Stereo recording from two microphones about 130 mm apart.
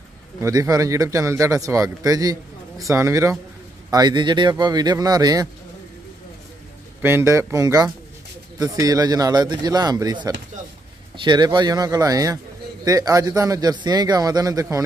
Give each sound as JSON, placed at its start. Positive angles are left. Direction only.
{"t": 0.4, "sound": "speech", "side_deg": -25}
{"t": 3.9, "sound": "speech", "side_deg": -35}
{"t": 7.0, "sound": "speech", "side_deg": -20}